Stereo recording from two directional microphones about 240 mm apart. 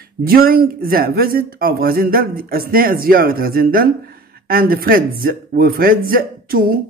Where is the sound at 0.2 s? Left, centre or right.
Right.